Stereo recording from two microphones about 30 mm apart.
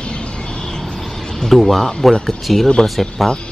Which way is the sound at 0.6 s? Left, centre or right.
Centre.